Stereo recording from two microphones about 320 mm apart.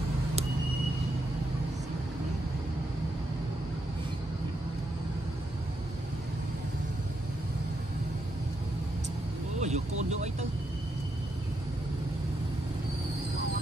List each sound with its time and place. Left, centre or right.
9.6 s vehicle: right